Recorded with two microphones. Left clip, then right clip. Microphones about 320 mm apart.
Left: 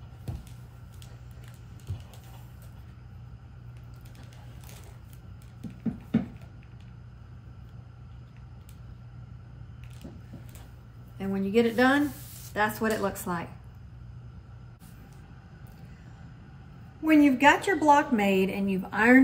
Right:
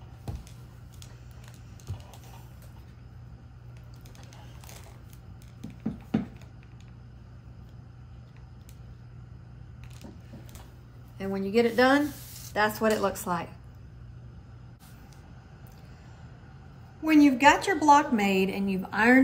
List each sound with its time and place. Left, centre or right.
11.1 s a woman's voice: centre
17.0 s a woman's voice: centre